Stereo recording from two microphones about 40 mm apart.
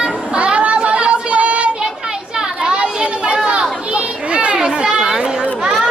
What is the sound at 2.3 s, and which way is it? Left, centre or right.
Children playing, right.